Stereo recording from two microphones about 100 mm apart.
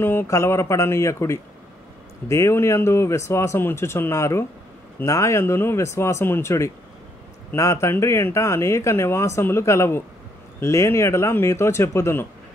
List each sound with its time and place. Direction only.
0.0 s speech: 20° left (ahead or behind)